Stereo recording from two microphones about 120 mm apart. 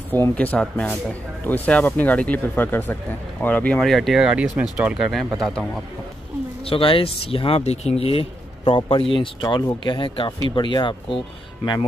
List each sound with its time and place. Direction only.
0.1 s speech: 15° left (ahead or behind)
6.6 s speech: 50° left (ahead or behind)